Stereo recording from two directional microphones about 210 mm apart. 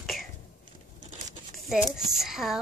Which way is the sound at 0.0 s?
Centre (ahead or behind).